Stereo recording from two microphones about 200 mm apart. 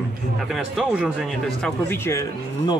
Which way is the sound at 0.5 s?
Centre (ahead or behind).